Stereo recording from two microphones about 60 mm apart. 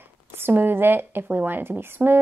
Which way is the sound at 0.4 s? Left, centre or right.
Right.